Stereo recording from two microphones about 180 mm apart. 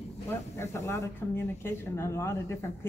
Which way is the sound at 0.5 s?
15° left (ahead or behind).